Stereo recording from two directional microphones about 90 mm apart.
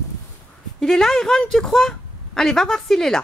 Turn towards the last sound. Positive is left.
turn(degrees=5)  # may be behind; listen again after turning